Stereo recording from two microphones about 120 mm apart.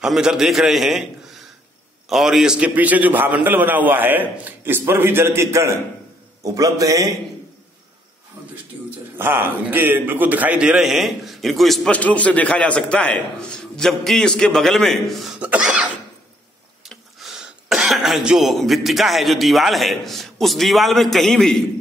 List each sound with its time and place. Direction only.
0.0 s a man's voice: 5° right (ahead or behind)
2.0 s a man's voice: 5° right (ahead or behind); by 7.1 s 30° right (ahead or behind)
9.1 s a man's voice: 15° right (ahead or behind); by 21.6 s 5° left (ahead or behind)